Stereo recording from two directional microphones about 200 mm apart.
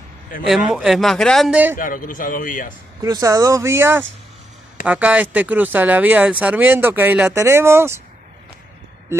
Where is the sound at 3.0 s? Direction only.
20° right (ahead or behind).